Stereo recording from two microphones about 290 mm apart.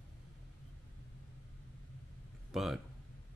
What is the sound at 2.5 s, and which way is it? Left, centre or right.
Speech, centre.